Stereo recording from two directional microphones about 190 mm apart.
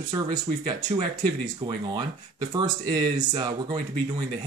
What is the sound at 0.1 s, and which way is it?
Speech, 20° right (ahead or behind).